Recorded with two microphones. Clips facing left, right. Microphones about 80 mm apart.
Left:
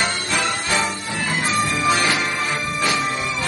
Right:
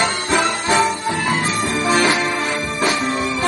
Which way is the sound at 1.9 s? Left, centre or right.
Right.